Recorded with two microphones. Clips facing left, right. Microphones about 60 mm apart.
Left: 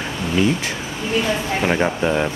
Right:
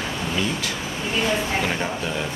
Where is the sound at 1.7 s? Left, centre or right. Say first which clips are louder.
Left 7 dB; left.